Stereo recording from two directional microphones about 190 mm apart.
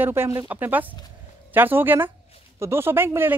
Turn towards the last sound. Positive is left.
turn(degrees=-10)  # may be behind; listen again after turning